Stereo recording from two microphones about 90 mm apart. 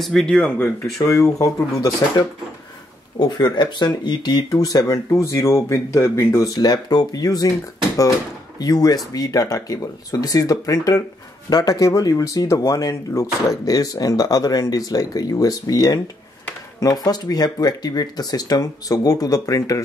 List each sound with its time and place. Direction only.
0.0 s speech: 5° left (ahead or behind)
0.9 s speech: 35° left (ahead or behind)
3.2 s speech: 55° left (ahead or behind)
8.5 s speech: 45° left (ahead or behind)